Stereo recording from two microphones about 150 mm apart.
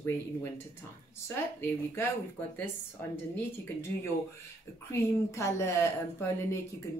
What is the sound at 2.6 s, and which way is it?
A woman's voice, 15° left (ahead or behind).